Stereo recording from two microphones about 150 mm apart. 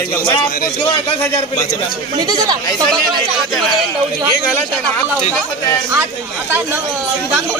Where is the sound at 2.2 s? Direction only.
30° right (ahead or behind).